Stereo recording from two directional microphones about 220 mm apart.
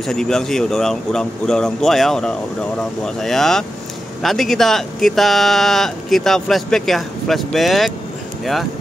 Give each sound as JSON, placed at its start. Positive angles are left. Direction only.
{"t": 0.0, "sound": "speech", "side_deg": 0}